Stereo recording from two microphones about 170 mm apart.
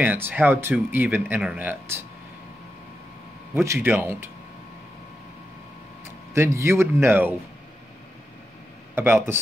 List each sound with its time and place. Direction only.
0.0 s speech: 10° right (ahead or behind)
3.5 s speech: 15° right (ahead or behind)
6.3 s speech: 15° right (ahead or behind)
8.9 s speech: 15° right (ahead or behind)